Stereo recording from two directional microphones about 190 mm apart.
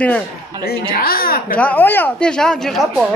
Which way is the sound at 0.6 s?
55° left (ahead or behind).